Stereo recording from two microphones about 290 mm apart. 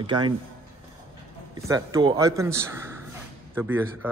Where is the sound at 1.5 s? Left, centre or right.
Centre.